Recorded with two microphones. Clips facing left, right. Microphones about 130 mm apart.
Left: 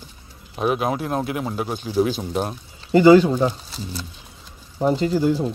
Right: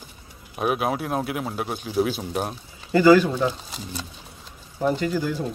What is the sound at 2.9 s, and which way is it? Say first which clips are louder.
Speech: left 3 dB; 25° left (ahead or behind).